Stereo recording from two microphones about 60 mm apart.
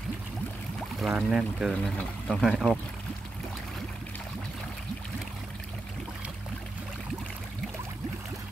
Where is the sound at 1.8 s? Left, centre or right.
Centre.